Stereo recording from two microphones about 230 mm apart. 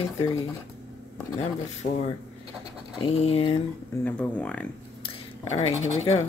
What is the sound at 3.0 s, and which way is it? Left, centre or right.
Speech, left.